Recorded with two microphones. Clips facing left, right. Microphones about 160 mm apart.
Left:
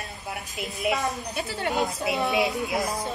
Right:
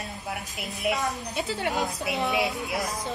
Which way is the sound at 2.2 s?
20° left (ahead or behind).